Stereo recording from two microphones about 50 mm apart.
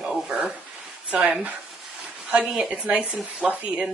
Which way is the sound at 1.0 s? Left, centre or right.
Right.